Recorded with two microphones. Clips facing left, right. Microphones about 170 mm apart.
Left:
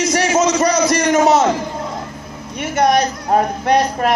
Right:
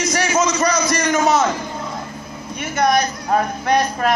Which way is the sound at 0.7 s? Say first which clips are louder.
Left 4 dB; 70° left (ahead or behind).